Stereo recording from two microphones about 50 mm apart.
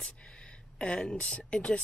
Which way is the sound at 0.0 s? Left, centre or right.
Left.